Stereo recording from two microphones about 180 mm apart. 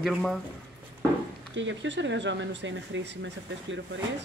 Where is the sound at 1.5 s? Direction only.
90° right.